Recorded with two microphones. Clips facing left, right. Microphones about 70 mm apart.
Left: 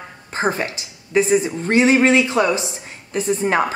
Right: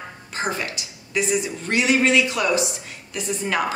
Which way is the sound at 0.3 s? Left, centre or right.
Left.